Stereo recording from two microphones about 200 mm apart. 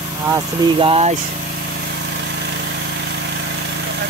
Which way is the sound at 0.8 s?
30° right (ahead or behind).